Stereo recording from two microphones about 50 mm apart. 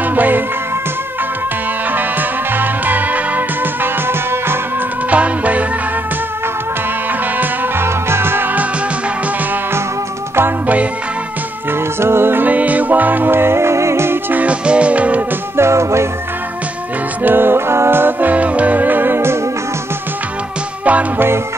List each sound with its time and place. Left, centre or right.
0.1 s music: right
2.0 s music: right
4.1 s music: right
5.1 s music: right
7.8 s music: right
12.0 s music: right
12.4 s music: right
14.3 s music: right
15.5 s music: right
17.2 s music: right
18.3 s music: right